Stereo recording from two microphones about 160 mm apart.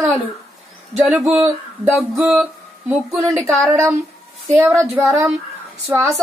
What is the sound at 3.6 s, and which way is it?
A woman's voice, 20° right (ahead or behind).